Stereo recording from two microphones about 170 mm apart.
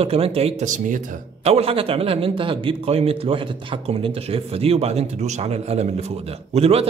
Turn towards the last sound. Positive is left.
turn(degrees=-35)  # may be behind; listen again after turning